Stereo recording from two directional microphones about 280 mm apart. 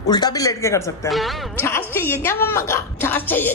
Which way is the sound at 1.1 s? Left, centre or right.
Centre.